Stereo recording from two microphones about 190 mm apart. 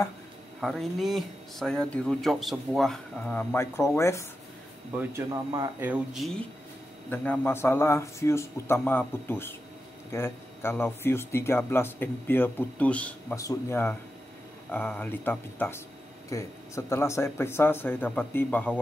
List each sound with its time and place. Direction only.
0.6 s speech: centre (ahead or behind)
4.9 s speech: 15° right (ahead or behind)
5.8 s speech: 5° right (ahead or behind)
7.1 s speech: 10° left (ahead or behind)